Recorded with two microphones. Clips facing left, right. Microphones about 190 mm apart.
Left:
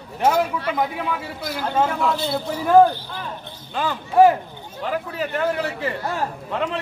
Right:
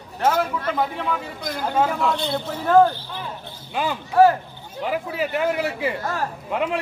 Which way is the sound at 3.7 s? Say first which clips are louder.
Left 1 dB; 10° right (ahead or behind).